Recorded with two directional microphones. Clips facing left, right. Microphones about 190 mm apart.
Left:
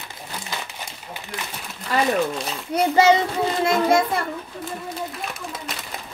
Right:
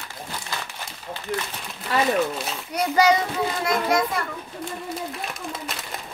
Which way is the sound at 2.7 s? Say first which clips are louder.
Left 3 dB; 25° left (ahead or behind).